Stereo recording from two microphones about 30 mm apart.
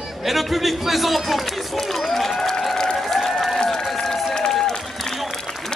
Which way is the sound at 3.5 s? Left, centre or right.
Centre.